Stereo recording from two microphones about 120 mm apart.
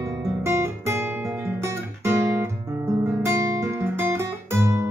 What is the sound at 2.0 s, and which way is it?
Guitar, 25° right (ahead or behind).